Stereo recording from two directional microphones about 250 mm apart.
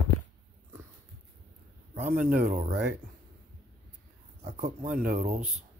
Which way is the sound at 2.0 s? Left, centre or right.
Right.